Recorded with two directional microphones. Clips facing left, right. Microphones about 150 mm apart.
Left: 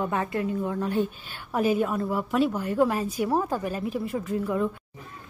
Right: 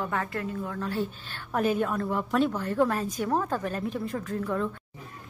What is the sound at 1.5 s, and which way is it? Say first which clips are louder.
A woman's voice: left 2 dB; 5° left (ahead or behind).